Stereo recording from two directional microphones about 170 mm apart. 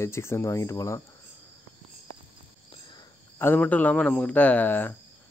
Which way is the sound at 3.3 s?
10° left (ahead or behind).